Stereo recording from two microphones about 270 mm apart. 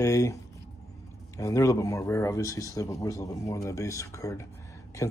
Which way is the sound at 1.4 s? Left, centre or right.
Centre.